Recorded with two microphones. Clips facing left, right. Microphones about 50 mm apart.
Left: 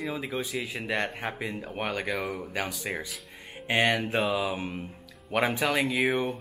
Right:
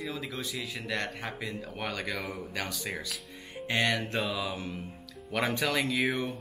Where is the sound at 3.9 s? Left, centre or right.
Centre.